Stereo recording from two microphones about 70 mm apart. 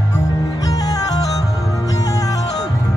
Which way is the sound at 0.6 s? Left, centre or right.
Left.